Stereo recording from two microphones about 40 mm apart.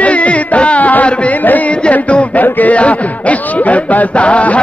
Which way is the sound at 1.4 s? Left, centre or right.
Left.